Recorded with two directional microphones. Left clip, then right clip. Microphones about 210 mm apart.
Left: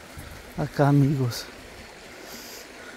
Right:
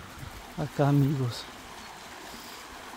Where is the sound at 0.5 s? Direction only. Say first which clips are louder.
Left 5 dB; 25° left (ahead or behind).